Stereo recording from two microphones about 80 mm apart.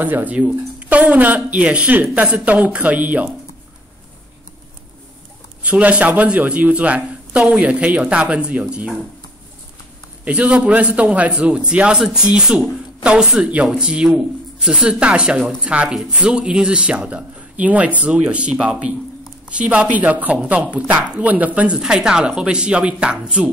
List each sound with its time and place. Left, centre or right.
0.0 s speech: right
5.6 s speech: centre
10.2 s speech: centre